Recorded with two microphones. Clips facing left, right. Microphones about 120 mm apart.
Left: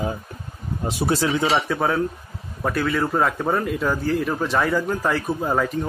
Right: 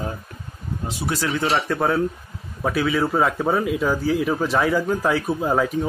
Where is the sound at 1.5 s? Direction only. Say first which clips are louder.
Even; centre (ahead or behind).